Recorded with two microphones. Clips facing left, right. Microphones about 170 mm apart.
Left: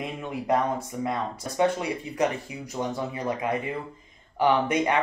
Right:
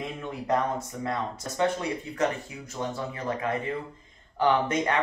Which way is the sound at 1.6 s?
15° left (ahead or behind).